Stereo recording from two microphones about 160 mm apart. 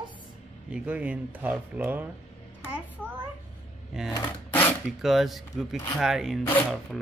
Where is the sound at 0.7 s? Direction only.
10° right (ahead or behind).